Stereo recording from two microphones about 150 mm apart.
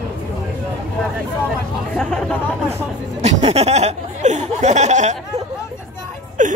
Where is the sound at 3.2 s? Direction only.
45° right (ahead or behind).